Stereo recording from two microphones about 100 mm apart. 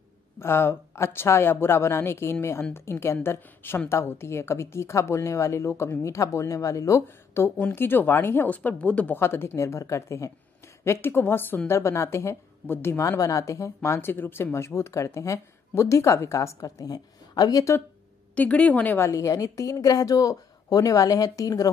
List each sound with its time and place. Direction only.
0.4 s speech: 25° left (ahead or behind)
18.3 s a woman's voice: 15° left (ahead or behind); by 21.6 s 35° left (ahead or behind)